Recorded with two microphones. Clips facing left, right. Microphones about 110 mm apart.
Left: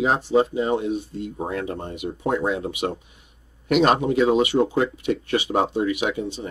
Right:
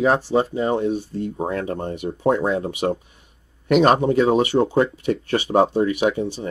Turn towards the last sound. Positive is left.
turn(degrees=-40)  # may be behind; listen again after turning